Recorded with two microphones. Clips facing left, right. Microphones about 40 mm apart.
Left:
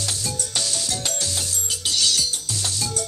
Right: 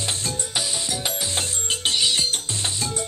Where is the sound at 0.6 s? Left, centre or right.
Centre.